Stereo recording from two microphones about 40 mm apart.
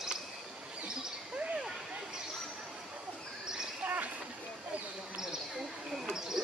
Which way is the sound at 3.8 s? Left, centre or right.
Right.